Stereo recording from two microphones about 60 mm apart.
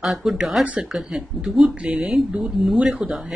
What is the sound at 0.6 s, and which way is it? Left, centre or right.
Speech, right.